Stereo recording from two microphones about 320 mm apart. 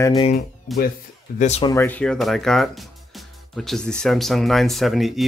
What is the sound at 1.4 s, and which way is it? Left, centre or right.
Speech, centre.